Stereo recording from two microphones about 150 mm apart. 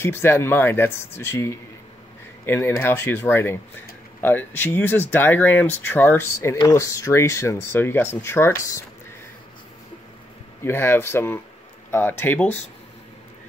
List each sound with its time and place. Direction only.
0.0 s speech: 15° left (ahead or behind)
10.6 s speech: 15° left (ahead or behind)